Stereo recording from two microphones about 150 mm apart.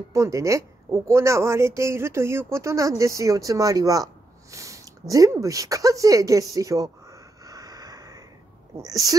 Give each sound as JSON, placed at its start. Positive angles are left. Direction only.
{"t": 0.1, "sound": "a woman's voice", "side_deg": -20}